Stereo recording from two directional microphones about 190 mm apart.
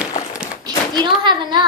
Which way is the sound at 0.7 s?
25° right (ahead or behind).